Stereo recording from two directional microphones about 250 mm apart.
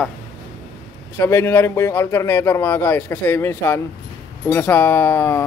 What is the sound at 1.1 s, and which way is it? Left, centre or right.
Speech, centre.